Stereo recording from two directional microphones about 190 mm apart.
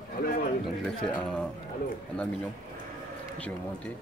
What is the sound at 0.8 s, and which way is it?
Speech, 5° left (ahead or behind).